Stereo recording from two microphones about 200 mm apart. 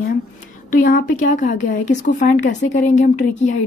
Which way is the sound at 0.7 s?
40° left (ahead or behind).